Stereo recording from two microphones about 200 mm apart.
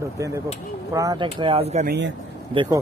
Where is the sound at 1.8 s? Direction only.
60° right (ahead or behind).